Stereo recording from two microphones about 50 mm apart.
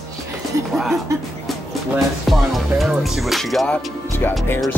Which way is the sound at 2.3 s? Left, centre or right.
Centre.